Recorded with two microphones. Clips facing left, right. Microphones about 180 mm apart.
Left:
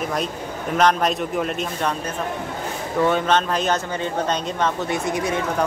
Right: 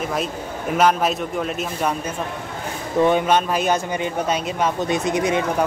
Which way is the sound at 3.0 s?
15° right (ahead or behind).